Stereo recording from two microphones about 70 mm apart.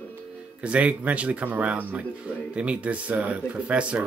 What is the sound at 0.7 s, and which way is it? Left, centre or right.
Speech, centre.